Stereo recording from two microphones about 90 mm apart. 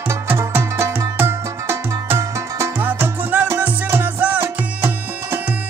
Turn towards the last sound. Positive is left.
turn(degrees=-25)  # may be behind; listen again after turning